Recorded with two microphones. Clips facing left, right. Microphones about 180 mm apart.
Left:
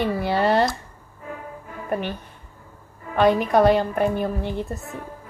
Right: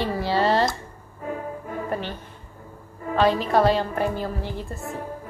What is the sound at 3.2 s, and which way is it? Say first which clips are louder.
A woman's voice: left 2 dB; 15° left (ahead or behind).